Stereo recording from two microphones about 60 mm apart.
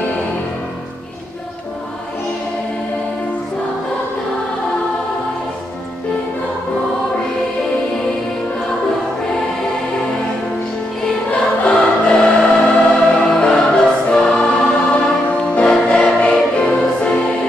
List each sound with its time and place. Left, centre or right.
11.6 s choir: centre
15.2 s music: left